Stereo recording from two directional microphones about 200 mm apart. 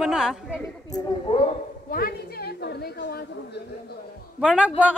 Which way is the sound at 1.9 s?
50° left (ahead or behind).